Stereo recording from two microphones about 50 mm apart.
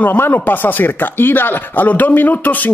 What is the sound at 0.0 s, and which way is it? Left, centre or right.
Speech, left.